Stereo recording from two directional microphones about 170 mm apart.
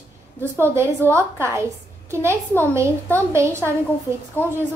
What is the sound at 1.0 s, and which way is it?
Speech, 10° left (ahead or behind).